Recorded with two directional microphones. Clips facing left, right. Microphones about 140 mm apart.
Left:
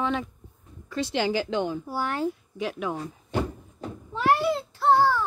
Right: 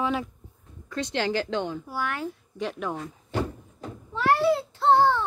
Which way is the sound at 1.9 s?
30° left (ahead or behind).